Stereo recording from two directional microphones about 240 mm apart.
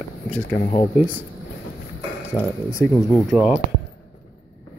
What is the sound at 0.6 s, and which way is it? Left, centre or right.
Speech, left.